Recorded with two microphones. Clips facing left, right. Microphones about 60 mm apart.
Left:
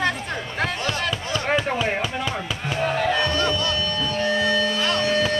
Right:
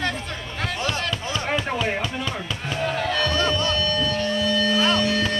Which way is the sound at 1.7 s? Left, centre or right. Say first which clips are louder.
Left 1 dB; centre.